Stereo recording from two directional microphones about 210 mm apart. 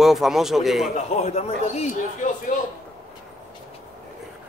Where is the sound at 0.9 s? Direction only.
30° left (ahead or behind).